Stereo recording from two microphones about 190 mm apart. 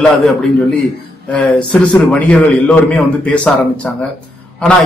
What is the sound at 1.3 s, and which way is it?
A man's voice, 5° left (ahead or behind).